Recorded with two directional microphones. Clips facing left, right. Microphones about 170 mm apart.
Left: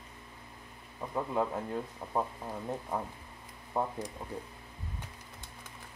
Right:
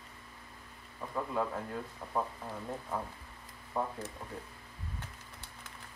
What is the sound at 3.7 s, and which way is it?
Speech, 25° left (ahead or behind).